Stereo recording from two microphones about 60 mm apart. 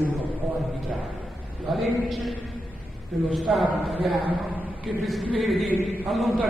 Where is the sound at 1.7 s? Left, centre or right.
Centre.